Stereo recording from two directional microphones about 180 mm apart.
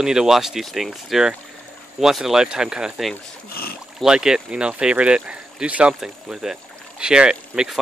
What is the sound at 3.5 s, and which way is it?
Speech, 60° left (ahead or behind).